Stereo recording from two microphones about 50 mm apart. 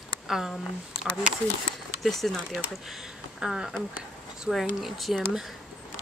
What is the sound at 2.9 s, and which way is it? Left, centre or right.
Speech, centre.